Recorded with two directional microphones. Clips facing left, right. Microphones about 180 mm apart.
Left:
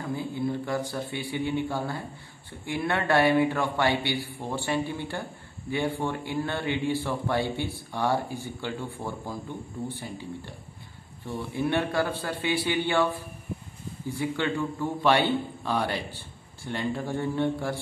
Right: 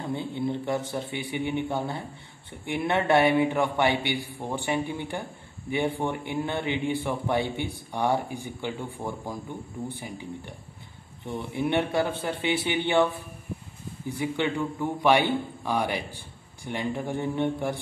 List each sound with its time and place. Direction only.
0.0 s a man's voice: 25° right (ahead or behind)